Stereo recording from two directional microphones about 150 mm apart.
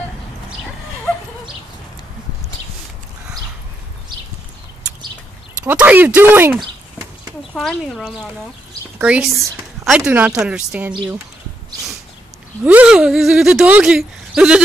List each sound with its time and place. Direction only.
5.6 s speech: 10° right (ahead or behind)
7.5 s a woman's voice: centre (ahead or behind)
12.6 s speech: 5° right (ahead or behind)